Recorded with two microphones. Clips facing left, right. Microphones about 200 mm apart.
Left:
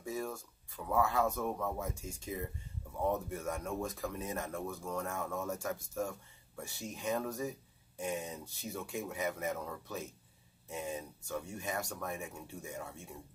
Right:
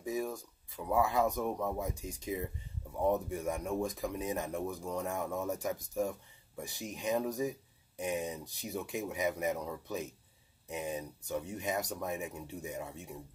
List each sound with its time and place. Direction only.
0.0 s speech: 15° right (ahead or behind)